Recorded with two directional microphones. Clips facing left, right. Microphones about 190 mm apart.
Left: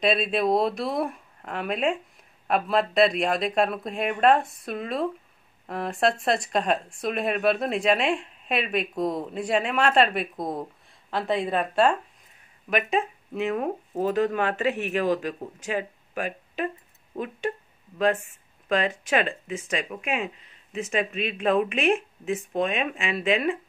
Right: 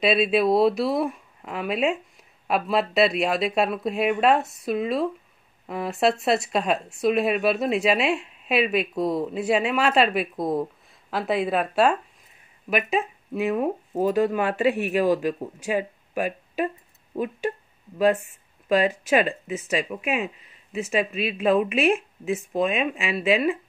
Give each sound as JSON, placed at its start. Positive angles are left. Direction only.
{"t": 0.0, "sound": "speech", "side_deg": -5}
{"t": 17.9, "sound": "speech", "side_deg": -10}
{"t": 20.7, "sound": "speech", "side_deg": -5}